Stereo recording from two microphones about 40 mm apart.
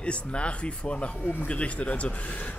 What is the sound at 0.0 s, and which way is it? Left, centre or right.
Speech, left.